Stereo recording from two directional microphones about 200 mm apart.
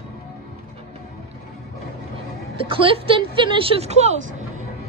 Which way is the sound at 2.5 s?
25° right (ahead or behind).